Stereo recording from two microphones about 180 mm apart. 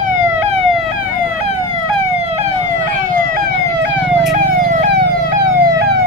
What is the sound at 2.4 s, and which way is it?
Emergency vehicle, 40° right (ahead or behind).